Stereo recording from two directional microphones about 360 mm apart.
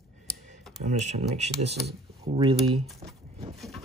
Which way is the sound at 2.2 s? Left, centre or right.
Centre.